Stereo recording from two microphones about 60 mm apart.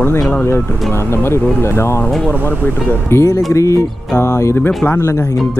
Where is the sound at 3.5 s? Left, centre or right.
Left.